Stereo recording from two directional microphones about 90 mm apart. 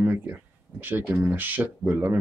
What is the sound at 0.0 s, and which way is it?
Speech, 20° right (ahead or behind).